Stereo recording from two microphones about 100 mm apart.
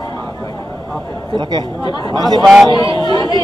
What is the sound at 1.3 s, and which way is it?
A man's voice, 45° right (ahead or behind).